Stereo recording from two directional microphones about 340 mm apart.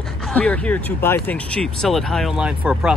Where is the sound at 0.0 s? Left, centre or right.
Centre.